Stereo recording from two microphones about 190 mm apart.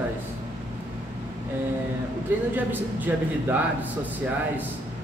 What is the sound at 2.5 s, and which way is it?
Speech, 10° right (ahead or behind).